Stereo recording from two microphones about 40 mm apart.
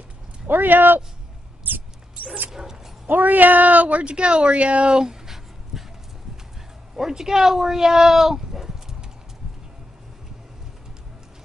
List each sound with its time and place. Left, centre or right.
0.5 s speech: right
2.5 s bow-wow: centre
3.1 s speech: right
4.1 s speech: right
4.9 s a sound: centre
7.0 s speech: centre